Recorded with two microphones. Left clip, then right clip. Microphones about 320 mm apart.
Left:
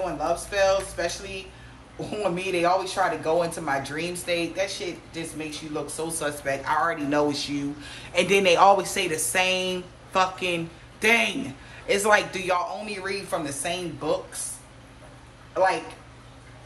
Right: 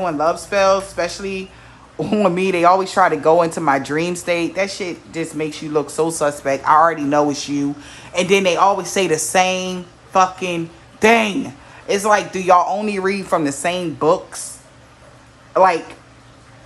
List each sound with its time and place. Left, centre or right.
0.0 s speech: centre
15.5 s speech: centre